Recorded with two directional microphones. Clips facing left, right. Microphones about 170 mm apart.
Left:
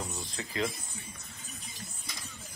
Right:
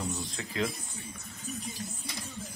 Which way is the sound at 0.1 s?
Centre (ahead or behind).